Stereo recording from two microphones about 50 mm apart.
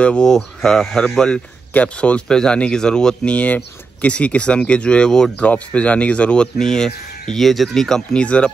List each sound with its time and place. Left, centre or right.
0.0 s speech: left
0.3 s speech: centre
3.3 s speech: left
6.6 s speech: centre
7.3 s speech: centre
8.1 s speech: left